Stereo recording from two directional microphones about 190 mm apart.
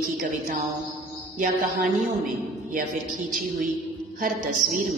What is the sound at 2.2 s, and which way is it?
Speech, 45° right (ahead or behind).